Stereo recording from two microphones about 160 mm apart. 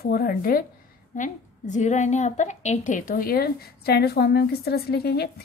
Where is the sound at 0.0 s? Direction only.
70° left (ahead or behind).